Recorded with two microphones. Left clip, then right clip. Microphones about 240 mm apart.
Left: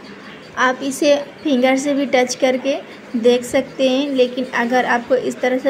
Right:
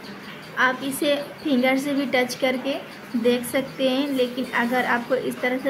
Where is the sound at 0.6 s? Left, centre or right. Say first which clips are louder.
Left 5 dB; centre.